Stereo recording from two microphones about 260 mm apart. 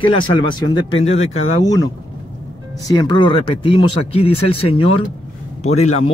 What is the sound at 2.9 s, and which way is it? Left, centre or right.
Speech, centre.